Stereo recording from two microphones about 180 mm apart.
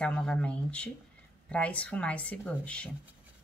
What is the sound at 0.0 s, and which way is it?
Speech, 5° left (ahead or behind).